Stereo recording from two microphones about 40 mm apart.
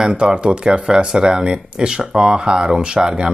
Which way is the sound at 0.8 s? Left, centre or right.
Centre.